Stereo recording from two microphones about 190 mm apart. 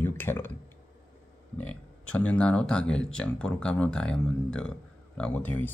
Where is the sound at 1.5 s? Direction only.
5° left (ahead or behind).